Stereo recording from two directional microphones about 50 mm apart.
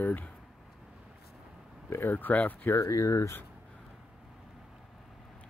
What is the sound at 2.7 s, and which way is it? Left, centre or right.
Speech, left.